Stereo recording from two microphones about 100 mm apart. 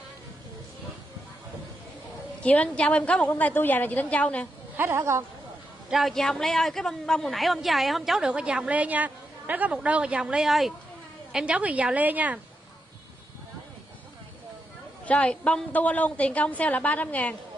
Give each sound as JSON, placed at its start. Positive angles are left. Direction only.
{"t": 2.4, "sound": "a woman's voice", "side_deg": 10}
{"t": 4.7, "sound": "a woman's voice", "side_deg": -25}
{"t": 5.9, "sound": "a woman's voice", "side_deg": 0}
{"t": 15.0, "sound": "a woman's voice", "side_deg": 10}